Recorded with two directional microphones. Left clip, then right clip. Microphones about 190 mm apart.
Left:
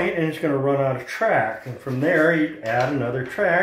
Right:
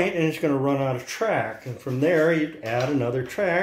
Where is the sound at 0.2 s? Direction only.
35° right (ahead or behind).